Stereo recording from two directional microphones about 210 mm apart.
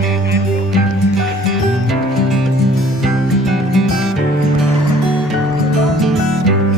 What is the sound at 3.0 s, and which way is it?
Music, centre (ahead or behind).